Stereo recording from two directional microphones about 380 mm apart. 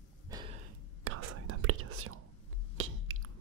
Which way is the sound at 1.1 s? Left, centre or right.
Right.